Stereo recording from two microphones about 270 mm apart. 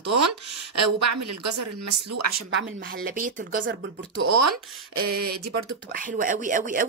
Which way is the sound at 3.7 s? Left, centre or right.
Right.